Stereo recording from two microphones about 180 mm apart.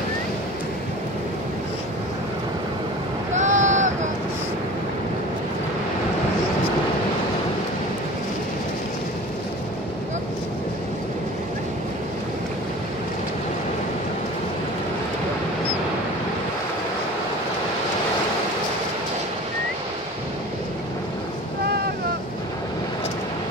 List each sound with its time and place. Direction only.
3.3 s vehicle: 40° right (ahead or behind)